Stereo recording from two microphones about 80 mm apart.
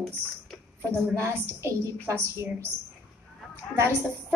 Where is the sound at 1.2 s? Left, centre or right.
Right.